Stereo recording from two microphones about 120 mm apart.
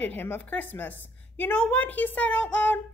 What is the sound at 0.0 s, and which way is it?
A woman's voice, 15° left (ahead or behind).